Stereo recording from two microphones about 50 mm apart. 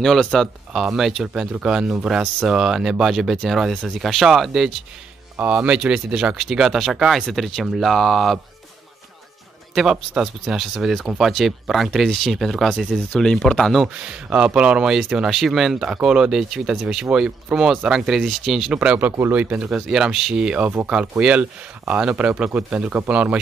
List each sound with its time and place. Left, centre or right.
0.0 s speech: centre
0.7 s speech: centre
5.4 s speech: right; by 8.4 s centre
9.8 s speech: centre
13.2 s speech: centre
14.0 s speech: centre
15.8 s speech: centre
18.7 s speech: right
19.7 s speech: centre